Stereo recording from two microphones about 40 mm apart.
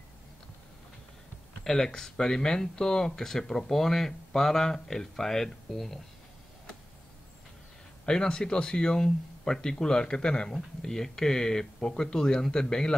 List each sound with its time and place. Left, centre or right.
1.6 s speech: centre
8.1 s speech: centre